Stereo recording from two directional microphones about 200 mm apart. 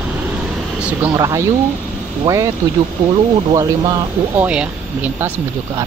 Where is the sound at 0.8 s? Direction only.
15° right (ahead or behind).